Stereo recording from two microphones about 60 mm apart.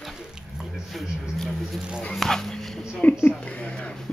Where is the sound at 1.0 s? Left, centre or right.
Centre.